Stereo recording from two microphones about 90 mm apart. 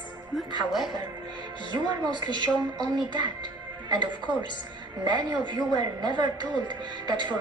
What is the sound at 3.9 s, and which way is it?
Speech, 60° right (ahead or behind).